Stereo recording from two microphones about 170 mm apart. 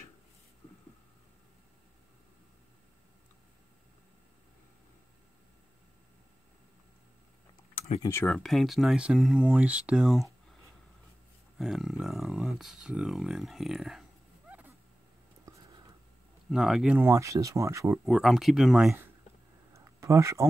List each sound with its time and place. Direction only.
8.0 s speech: 15° left (ahead or behind)
8.4 s speech: centre (ahead or behind)
11.5 s speech: centre (ahead or behind)
16.4 s speech: 5° right (ahead or behind)
18.0 s speech: centre (ahead or behind)
19.7 s a sound: 15° right (ahead or behind)